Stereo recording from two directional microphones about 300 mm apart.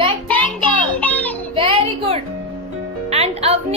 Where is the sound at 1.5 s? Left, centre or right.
Centre.